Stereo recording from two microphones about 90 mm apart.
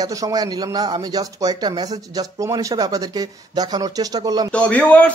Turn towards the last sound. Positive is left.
turn(degrees=15)  # may be behind; listen again after turning